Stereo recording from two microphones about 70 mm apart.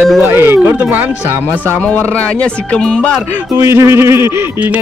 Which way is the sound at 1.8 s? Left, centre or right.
Centre.